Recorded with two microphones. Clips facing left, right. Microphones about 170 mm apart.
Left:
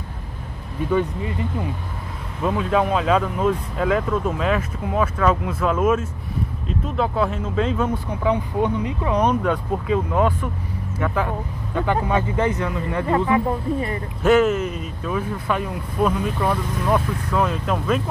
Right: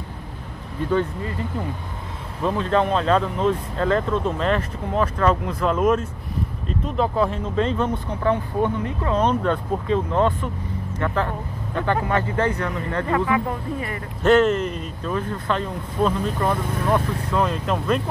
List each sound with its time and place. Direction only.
0.9 s speech: 15° left (ahead or behind)
14.2 s speech: 5° left (ahead or behind)